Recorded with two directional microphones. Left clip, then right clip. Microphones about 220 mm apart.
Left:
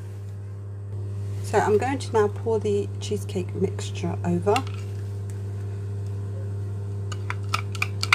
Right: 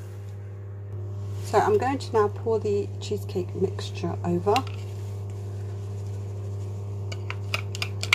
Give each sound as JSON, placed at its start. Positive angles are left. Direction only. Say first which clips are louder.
{"t": 1.5, "sound": "a woman's voice", "louder": "even", "side_deg": 0}
{"t": 7.2, "sound": "computer keyboard", "louder": "left 3 dB", "side_deg": 20}